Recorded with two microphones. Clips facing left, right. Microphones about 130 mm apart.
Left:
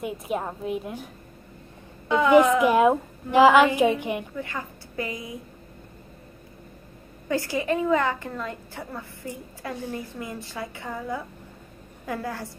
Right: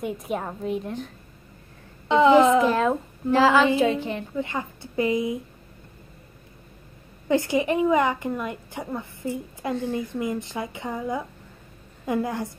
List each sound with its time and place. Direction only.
0.0 s a woman's voice: centre (ahead or behind)
2.0 s a woman's voice: 20° right (ahead or behind)
2.6 s a woman's voice: 15° left (ahead or behind)
4.4 s a woman's voice: 20° right (ahead or behind)
7.2 s a woman's voice: 20° right (ahead or behind)